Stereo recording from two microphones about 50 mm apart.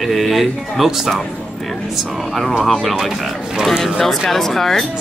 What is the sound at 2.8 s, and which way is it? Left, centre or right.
Speech, centre.